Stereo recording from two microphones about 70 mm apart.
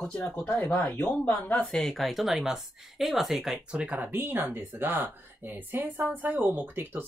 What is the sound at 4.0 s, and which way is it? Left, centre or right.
Speech, right.